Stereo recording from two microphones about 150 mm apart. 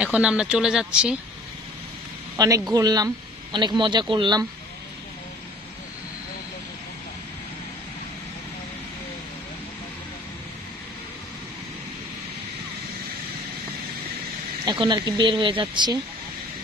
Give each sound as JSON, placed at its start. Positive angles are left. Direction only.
{"t": 0.0, "sound": "speech", "side_deg": -5}
{"t": 2.3, "sound": "speech", "side_deg": -20}
{"t": 14.6, "sound": "speech", "side_deg": -30}